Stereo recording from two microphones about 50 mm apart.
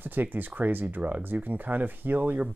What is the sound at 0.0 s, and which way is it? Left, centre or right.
Speech, right.